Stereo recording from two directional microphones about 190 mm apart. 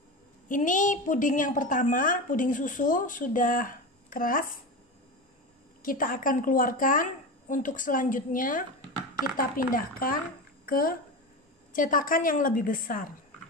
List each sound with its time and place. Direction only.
0.5 s a woman's voice: 40° left (ahead or behind)
5.8 s a woman's voice: 45° left (ahead or behind)